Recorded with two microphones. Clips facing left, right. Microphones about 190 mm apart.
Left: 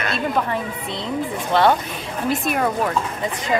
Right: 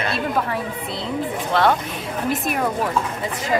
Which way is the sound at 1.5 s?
Centre (ahead or behind).